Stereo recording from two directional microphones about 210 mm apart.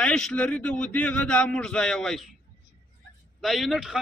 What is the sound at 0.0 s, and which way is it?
A man's voice, 5° left (ahead or behind).